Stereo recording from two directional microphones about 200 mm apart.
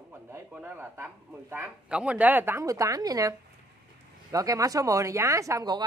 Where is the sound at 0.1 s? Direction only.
10° right (ahead or behind).